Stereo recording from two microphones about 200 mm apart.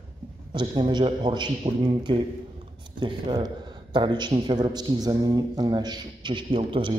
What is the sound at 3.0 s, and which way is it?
A man's voice, 25° right (ahead or behind).